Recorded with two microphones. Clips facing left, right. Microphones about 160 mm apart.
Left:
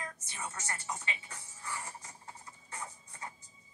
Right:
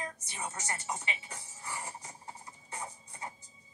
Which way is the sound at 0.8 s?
15° right (ahead or behind).